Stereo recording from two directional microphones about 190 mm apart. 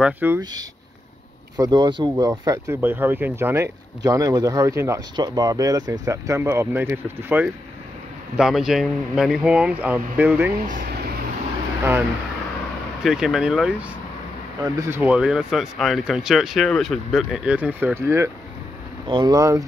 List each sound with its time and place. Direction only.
0.0 s speech: 10° right (ahead or behind)
0.4 s speech: 20° right (ahead or behind)
10.6 s speech: 50° right (ahead or behind)
13.0 s speech: centre (ahead or behind); by 19.6 s 20° right (ahead or behind)